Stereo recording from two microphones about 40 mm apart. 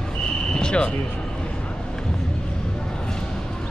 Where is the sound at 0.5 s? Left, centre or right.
Centre.